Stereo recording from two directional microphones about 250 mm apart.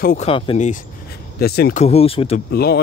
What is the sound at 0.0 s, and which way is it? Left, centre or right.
Speech, left.